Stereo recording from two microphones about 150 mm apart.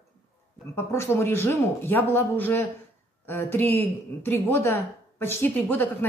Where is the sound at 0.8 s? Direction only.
15° left (ahead or behind).